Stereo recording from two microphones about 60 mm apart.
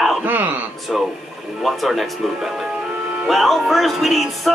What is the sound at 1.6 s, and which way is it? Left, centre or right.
Speech, centre.